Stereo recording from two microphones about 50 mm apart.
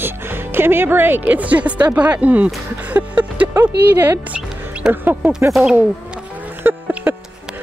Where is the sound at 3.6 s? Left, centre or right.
Right.